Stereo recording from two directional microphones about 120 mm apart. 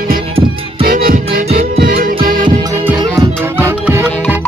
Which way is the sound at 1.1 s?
65° right (ahead or behind).